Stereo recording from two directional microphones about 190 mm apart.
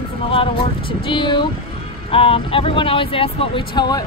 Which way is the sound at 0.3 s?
30° left (ahead or behind).